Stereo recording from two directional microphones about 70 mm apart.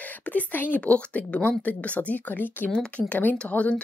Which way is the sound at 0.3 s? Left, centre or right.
Left.